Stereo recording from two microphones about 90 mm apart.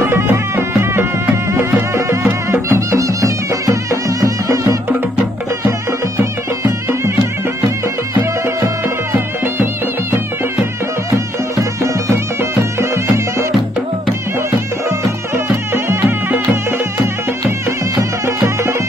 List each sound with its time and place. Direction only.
0.1 s music: 25° right (ahead or behind)
3.9 s music: 35° right (ahead or behind)
5.7 s music: 25° right (ahead or behind)
14.9 s music: 30° right (ahead or behind)
17.9 s music: 30° right (ahead or behind)